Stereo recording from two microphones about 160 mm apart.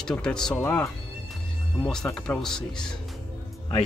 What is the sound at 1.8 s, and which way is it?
Speech, 5° left (ahead or behind).